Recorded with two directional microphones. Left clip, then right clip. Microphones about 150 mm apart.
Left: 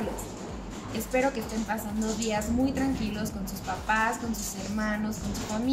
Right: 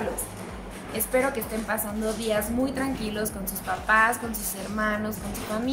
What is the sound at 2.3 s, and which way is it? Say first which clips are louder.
A woman's voice: right 2 dB; 20° right (ahead or behind).